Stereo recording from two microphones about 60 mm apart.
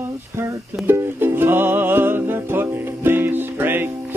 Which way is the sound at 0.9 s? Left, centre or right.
Right.